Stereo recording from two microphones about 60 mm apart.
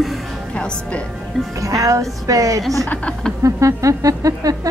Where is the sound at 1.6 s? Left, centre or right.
Right.